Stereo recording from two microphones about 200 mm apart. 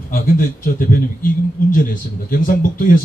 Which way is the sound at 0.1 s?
45° left (ahead or behind).